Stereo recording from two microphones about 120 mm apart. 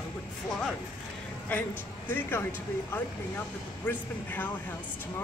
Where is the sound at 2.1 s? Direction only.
20° left (ahead or behind).